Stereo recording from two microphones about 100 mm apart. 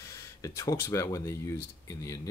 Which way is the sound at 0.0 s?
30° left (ahead or behind).